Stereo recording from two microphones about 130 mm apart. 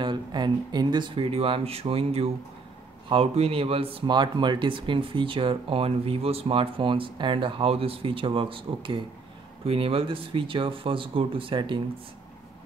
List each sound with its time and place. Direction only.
0.0 s speech: 35° right (ahead or behind)